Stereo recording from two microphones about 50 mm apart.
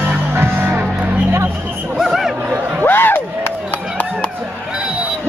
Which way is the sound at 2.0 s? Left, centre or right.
Centre.